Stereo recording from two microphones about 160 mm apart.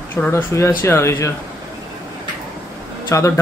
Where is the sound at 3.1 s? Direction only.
20° left (ahead or behind).